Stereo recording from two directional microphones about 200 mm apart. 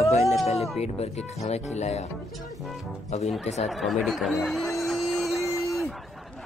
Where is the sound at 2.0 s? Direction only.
Centre (ahead or behind).